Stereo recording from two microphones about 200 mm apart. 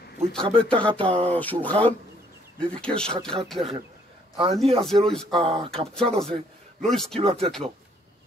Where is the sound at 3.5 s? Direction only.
25° right (ahead or behind).